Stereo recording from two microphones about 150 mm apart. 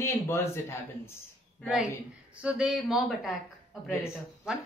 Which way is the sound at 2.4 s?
5° right (ahead or behind).